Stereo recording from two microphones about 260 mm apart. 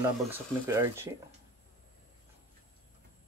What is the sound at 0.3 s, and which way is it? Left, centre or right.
Speech, centre.